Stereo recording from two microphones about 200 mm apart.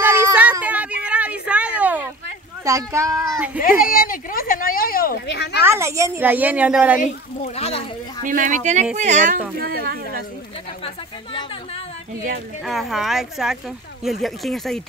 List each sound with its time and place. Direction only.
0.0 s a sound: 10° right (ahead or behind)
2.6 s a woman's voice: 15° right (ahead or behind)
3.6 s speech: 45° left (ahead or behind)
5.6 s a woman's voice: 15° right (ahead or behind)
7.0 s speech: 30° left (ahead or behind)
8.2 s speech: 40° right (ahead or behind)
9.7 s speech: 50° right (ahead or behind)
12.6 s speech: centre (ahead or behind)